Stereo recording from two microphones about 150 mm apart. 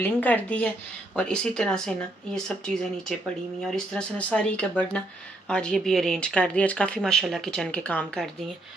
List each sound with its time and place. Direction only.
0.0 s speech: 10° left (ahead or behind)